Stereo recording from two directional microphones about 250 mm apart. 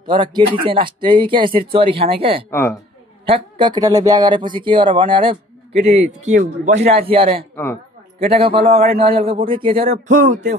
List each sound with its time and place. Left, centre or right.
0.0 s speech: centre
2.5 s a woman's voice: centre
3.3 s speech: right
9.8 s speech: right